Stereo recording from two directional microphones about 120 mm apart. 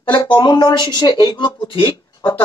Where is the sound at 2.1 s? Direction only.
35° left (ahead or behind).